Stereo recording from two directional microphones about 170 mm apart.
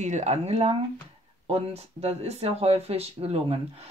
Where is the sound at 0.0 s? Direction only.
45° right (ahead or behind).